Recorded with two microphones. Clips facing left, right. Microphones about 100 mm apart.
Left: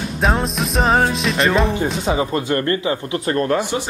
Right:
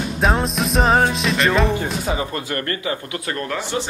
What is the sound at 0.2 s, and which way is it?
Music, centre (ahead or behind).